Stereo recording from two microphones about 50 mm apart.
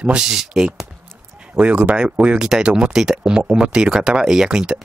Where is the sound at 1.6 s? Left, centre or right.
Right.